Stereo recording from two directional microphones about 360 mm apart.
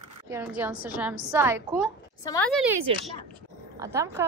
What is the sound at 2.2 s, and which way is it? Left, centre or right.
Speech, centre.